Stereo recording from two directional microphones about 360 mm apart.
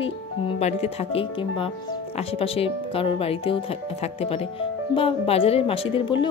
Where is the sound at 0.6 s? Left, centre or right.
Centre.